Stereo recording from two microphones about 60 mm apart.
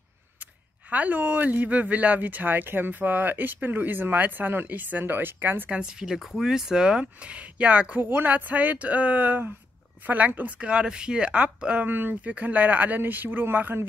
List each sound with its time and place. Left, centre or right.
0.4 s speech: right
5.7 s speech: centre
8.0 s speech: right
11.9 s speech: right